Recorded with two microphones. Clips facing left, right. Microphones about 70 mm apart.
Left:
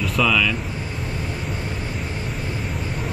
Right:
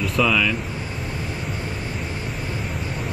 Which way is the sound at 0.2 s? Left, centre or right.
Centre.